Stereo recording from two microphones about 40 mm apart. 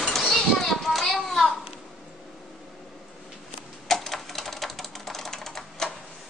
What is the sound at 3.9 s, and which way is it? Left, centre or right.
Typewriter, centre.